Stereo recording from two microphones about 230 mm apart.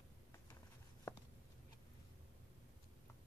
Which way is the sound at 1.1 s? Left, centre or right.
Centre.